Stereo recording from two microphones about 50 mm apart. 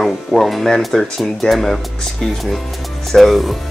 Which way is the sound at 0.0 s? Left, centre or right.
Centre.